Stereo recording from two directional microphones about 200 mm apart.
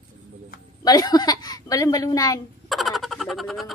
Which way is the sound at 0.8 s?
20° left (ahead or behind).